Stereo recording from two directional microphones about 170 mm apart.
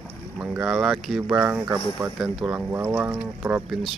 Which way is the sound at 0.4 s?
5° right (ahead or behind).